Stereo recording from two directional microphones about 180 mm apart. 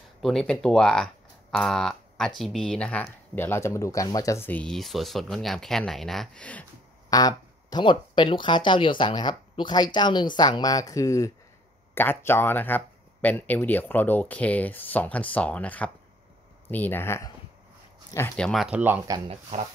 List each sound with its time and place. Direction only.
0.2 s speech: centre (ahead or behind)
7.1 s speech: 20° left (ahead or behind); by 19.1 s 10° right (ahead or behind)
19.1 s speech: 30° right (ahead or behind)